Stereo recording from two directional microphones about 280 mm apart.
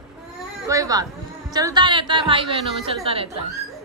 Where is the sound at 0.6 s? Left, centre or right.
Centre.